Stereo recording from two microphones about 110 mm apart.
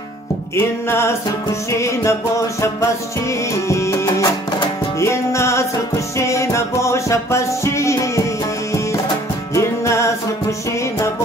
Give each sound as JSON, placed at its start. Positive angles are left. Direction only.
{"t": 0.6, "sound": "music", "side_deg": 20}
{"t": 9.5, "sound": "music", "side_deg": 25}